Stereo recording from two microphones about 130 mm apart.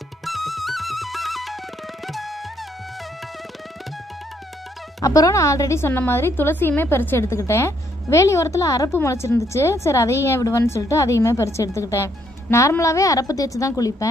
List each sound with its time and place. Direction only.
0.2 s music: centre (ahead or behind)
5.0 s a woman's voice: 25° left (ahead or behind)